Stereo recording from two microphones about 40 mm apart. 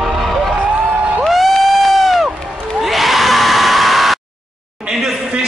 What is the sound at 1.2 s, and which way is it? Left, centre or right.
Crowd, centre.